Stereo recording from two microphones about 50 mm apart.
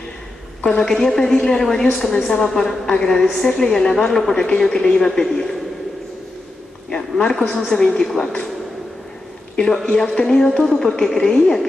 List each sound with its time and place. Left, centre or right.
0.7 s a woman's voice: centre
6.9 s a woman's voice: centre
10.1 s a woman's voice: centre